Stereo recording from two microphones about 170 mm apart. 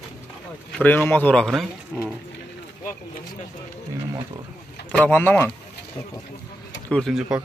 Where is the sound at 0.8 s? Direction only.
10° left (ahead or behind).